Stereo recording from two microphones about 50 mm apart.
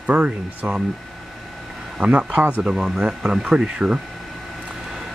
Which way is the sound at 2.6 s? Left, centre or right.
Centre.